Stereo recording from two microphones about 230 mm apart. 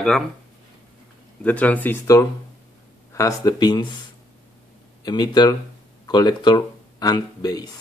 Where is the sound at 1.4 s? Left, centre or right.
Centre.